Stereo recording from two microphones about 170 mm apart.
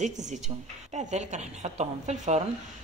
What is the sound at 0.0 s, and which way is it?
Speech, 45° right (ahead or behind).